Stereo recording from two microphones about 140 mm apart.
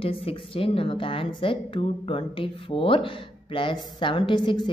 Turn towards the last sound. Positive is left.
turn(degrees=35)  # may be behind; listen again after turning